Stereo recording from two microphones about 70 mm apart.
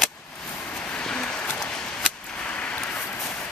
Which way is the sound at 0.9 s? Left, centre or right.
Centre.